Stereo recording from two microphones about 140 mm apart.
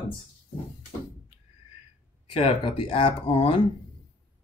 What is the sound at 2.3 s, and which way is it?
Speech, 40° left (ahead or behind).